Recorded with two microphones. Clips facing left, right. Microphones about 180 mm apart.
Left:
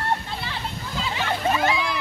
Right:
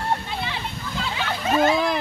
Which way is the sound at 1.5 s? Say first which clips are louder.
Right 8 dB; 50° right (ahead or behind).